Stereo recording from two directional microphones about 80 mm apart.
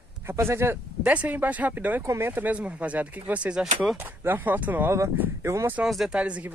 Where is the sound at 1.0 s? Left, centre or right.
Centre.